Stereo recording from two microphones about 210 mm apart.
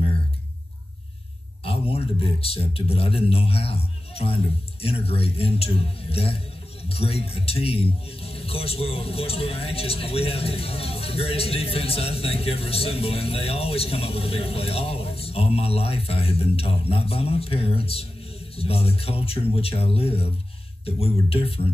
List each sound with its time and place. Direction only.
1.6 s a man's voice: 25° left (ahead or behind)